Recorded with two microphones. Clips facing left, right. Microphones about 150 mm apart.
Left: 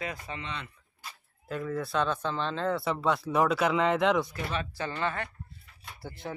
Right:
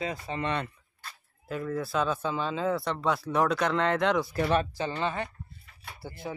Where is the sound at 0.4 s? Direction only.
55° right (ahead or behind).